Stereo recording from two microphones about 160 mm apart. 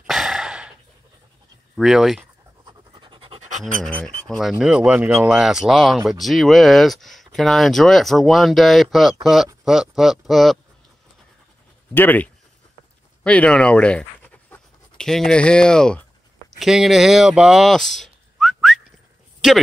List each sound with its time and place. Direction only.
0.0 s a sound: centre (ahead or behind)
1.8 s speech: centre (ahead or behind)
2.6 s pant: 30° right (ahead or behind)
3.8 s speech: 5° left (ahead or behind)
11.9 s speech: 10° left (ahead or behind)